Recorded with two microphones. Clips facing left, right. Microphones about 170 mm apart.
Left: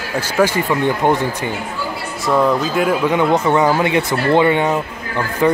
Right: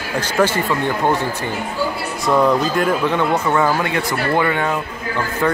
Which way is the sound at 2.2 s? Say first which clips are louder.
Even; centre (ahead or behind).